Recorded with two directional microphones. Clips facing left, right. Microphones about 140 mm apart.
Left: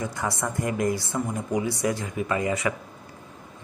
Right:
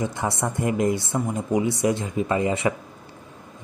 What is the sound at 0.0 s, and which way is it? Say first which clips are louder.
A woman's voice: right 3 dB; 25° right (ahead or behind).